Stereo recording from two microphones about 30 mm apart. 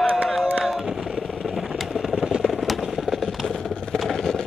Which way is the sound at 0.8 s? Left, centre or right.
Right.